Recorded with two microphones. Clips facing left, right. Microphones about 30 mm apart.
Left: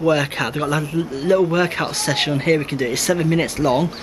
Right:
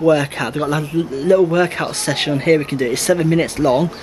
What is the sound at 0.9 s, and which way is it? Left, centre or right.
Speech, right.